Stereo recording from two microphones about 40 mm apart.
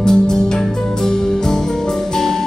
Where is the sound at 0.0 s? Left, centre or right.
Centre.